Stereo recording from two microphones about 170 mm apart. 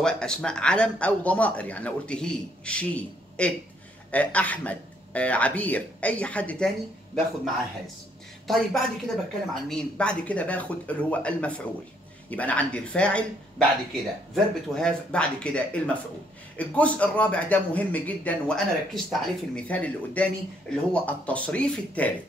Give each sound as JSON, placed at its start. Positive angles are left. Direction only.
{"t": 0.0, "sound": "a man's voice", "side_deg": 5}
{"t": 8.5, "sound": "a woman's voice", "side_deg": 0}